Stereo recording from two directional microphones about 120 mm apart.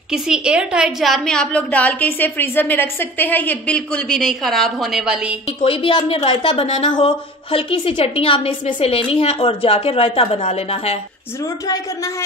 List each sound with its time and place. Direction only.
0.1 s a woman's voice: 5° right (ahead or behind)
5.6 s a woman's voice: 50° left (ahead or behind)
11.6 s speech: 30° left (ahead or behind)